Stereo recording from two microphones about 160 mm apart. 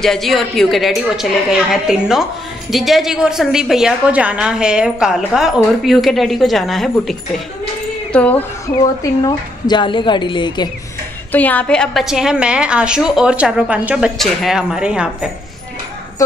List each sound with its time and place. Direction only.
0.0 s a woman's voice: centre (ahead or behind)
8.1 s a sound: 10° left (ahead or behind)
9.2 s a woman's voice: 30° left (ahead or behind)
11.3 s a woman's voice: 10° left (ahead or behind); by 15.0 s 5° right (ahead or behind)
16.2 s a woman's voice: 20° left (ahead or behind)